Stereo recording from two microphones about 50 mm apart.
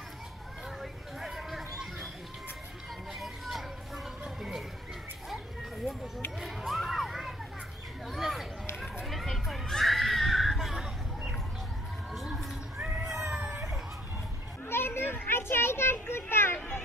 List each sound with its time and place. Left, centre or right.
1.2 s a sound: centre
3.1 s children playing: centre
6.4 s children shouting: centre
8.1 s a sound: centre
9.0 s children playing: centre
13.0 s cat: centre
14.7 s children playing: left